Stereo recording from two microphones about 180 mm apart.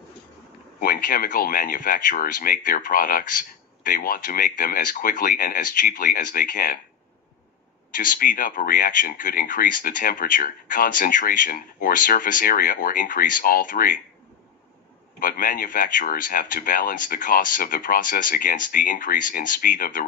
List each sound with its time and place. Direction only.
0.7 s speech: 50° left (ahead or behind)
7.9 s speech: 50° left (ahead or behind)
15.1 s speech: 50° left (ahead or behind)